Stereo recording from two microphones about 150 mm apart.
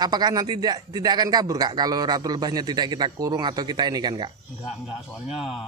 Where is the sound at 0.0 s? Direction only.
25° right (ahead or behind).